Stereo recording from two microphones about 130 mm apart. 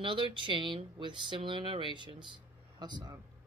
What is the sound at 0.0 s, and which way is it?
Speech, 40° right (ahead or behind).